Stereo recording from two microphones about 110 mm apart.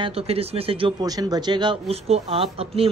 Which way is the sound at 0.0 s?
65° right (ahead or behind).